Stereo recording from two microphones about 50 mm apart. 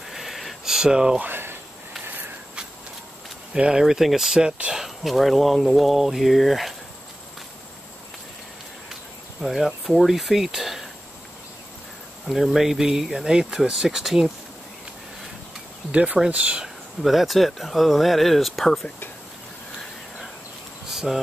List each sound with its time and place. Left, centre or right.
0.1 s a sound: centre
1.3 s a sound: right
2.0 s walk: right
3.5 s speech: centre
3.8 s speech: centre
4.8 s speech: centre
9.4 s speech: centre
12.3 s speech: centre
15.9 s speech: right
16.6 s speech: centre
20.9 s a sound: centre